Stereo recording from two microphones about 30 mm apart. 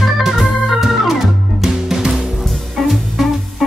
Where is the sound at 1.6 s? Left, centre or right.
Centre.